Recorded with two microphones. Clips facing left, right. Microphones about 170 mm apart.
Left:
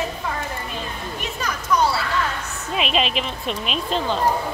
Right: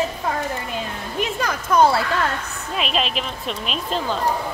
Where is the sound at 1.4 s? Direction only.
50° right (ahead or behind).